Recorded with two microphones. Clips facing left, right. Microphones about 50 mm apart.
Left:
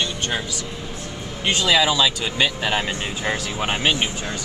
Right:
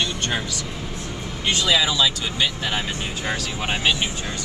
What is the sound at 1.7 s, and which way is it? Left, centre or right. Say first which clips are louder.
Speech: left 3 dB; left.